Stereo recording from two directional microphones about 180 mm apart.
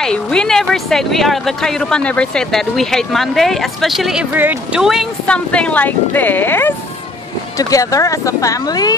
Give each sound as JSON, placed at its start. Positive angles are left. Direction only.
{"t": 0.0, "sound": "speech", "side_deg": 5}